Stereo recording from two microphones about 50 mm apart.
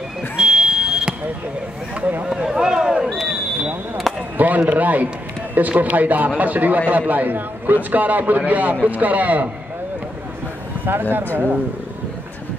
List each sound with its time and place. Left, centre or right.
0.4 s smoke detector: centre
2.0 s a sound: right
2.2 s a sound: centre
4.1 s chop: centre
4.4 s a man's voice: right
10.9 s speech: right